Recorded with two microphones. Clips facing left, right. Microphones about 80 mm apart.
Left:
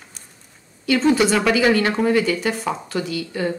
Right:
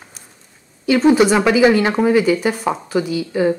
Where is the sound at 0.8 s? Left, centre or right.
Centre.